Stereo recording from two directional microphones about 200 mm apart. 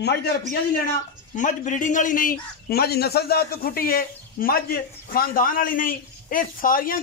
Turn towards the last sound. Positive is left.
turn(degrees=45)  # may be behind; listen again after turning